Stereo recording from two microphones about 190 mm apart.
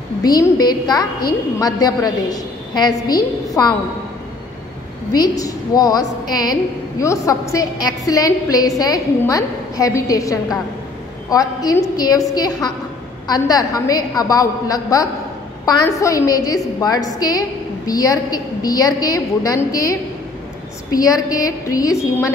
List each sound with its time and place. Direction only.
0.2 s a woman's voice: 20° left (ahead or behind)
5.1 s a woman's voice: 20° left (ahead or behind)